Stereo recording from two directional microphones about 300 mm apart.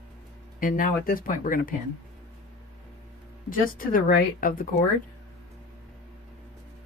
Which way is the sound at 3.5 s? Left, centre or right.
Left.